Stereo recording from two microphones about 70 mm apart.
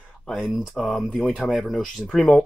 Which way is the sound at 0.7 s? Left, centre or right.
Centre.